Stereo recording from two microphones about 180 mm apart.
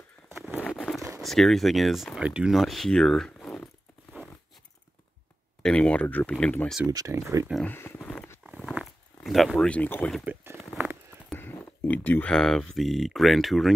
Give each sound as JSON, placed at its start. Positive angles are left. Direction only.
{"t": 0.6, "sound": "crumpling", "side_deg": 5}
{"t": 1.2, "sound": "speech", "side_deg": 0}
{"t": 5.6, "sound": "speech", "side_deg": 5}
{"t": 6.9, "sound": "speech", "side_deg": -20}
{"t": 7.6, "sound": "a sound", "side_deg": 10}
{"t": 8.5, "sound": "zipper", "side_deg": -5}
{"t": 10.2, "sound": "a sound", "side_deg": -15}
{"t": 10.6, "sound": "a sound", "side_deg": 0}
{"t": 11.3, "sound": "speech", "side_deg": 10}